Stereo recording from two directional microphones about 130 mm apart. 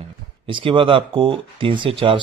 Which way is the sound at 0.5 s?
40° right (ahead or behind).